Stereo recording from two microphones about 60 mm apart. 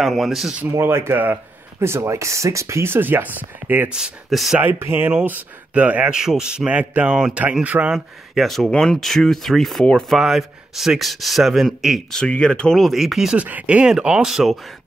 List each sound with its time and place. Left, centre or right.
0.0 s speech: centre
0.6 s speech: right
2.0 s speech: right
3.9 s speech: centre
4.6 s speech: right
5.2 s speech: right
6.1 s speech: centre
6.7 s speech: right
7.9 s speech: centre
10.1 s speech: centre
12.1 s speech: centre
12.7 s speech: centre
13.4 s speech: right; by 14.6 s centre